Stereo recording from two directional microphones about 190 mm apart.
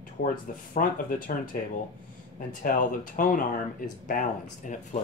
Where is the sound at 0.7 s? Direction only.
45° left (ahead or behind).